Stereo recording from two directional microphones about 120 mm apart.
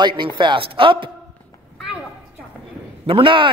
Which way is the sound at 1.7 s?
5° right (ahead or behind).